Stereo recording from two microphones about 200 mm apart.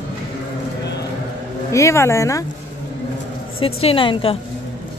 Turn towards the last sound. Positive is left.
turn(degrees=25)  # may be behind; listen again after turning